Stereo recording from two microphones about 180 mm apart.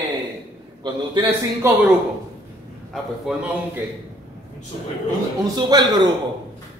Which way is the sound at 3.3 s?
Centre (ahead or behind).